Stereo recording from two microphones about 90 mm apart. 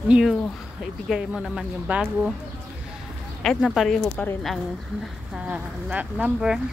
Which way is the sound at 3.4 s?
5° left (ahead or behind).